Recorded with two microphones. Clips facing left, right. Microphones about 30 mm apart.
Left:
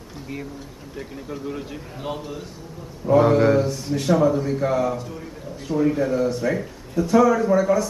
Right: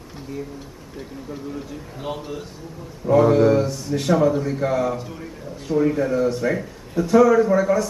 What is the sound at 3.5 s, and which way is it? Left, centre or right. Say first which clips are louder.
Mantra: right 1 dB; centre.